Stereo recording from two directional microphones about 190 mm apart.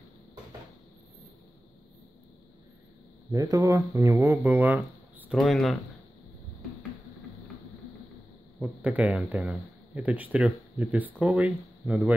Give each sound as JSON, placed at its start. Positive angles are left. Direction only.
{"t": 3.3, "sound": "speech", "side_deg": -20}
{"t": 5.4, "sound": "speech", "side_deg": 0}
{"t": 8.5, "sound": "speech", "side_deg": -10}